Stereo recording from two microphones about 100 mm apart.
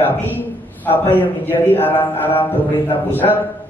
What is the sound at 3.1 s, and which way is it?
Speech, 20° left (ahead or behind).